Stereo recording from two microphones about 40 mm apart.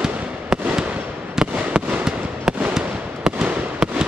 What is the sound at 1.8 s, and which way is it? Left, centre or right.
Fireworks, right.